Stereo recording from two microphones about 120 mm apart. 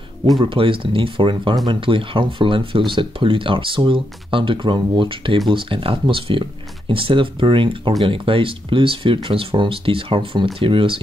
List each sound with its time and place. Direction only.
0.4 s speech: 45° right (ahead or behind)